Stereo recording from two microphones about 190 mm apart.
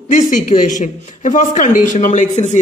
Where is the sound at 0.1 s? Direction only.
45° left (ahead or behind).